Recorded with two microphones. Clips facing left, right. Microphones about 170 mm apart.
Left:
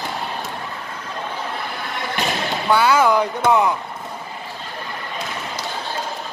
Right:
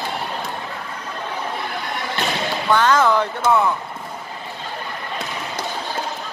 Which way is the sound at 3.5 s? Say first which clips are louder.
Left 1 dB; 15° left (ahead or behind).